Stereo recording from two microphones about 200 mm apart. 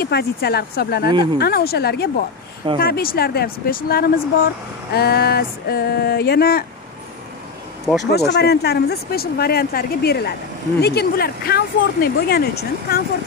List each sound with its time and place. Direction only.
0.0 s speech: 50° left (ahead or behind)
7.9 s speech: centre (ahead or behind)
8.4 s speech: 55° left (ahead or behind)